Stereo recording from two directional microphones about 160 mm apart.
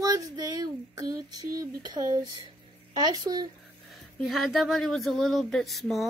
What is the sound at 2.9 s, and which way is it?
Speech, 25° right (ahead or behind).